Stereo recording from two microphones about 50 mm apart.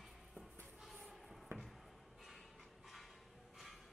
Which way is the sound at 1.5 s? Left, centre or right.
Right.